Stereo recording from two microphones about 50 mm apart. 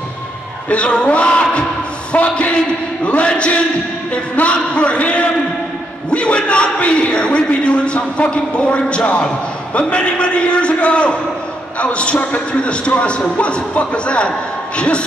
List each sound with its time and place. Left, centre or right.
0.7 s a man's voice: left